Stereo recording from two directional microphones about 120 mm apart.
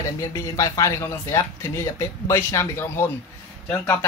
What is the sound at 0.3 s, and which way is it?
Speech, 30° left (ahead or behind).